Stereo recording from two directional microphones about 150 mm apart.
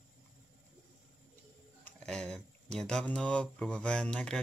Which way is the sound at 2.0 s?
5° left (ahead or behind).